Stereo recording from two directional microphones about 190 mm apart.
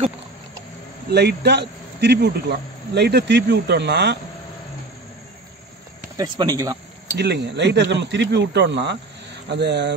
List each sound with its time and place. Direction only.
1.1 s speech: 60° right (ahead or behind)
6.1 s speech: 20° right (ahead or behind)
7.2 s speech: 65° right (ahead or behind)